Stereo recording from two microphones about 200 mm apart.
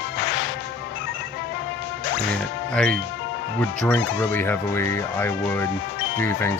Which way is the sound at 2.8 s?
5° left (ahead or behind).